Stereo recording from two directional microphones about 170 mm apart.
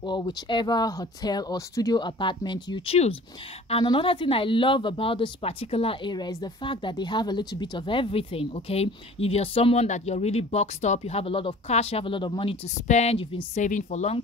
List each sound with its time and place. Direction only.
0.0 s speech: 25° left (ahead or behind)
12.8 s speech: 40° left (ahead or behind)
13.6 s speech: 50° left (ahead or behind)